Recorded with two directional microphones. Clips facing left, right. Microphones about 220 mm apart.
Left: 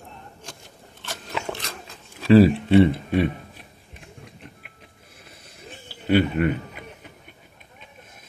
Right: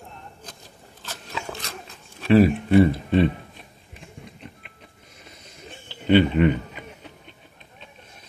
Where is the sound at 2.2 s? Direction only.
35° left (ahead or behind).